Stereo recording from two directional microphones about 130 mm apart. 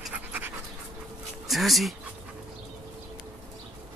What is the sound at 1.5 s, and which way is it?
Speech, centre (ahead or behind).